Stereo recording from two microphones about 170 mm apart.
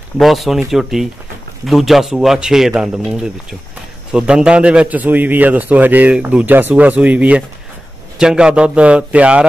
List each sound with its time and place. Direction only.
0.2 s a man's voice: centre (ahead or behind)